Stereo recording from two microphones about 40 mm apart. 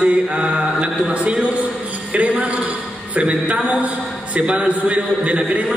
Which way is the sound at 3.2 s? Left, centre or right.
Right.